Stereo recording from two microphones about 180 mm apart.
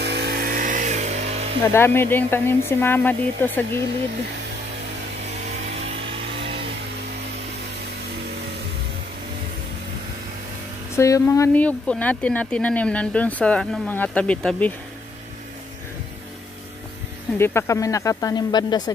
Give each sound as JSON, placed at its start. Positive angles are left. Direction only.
{"t": 0.0, "sound": "chainsaw", "side_deg": -65}
{"t": 1.7, "sound": "speech", "side_deg": 10}
{"t": 11.0, "sound": "speech", "side_deg": 15}
{"t": 17.4, "sound": "speech", "side_deg": 15}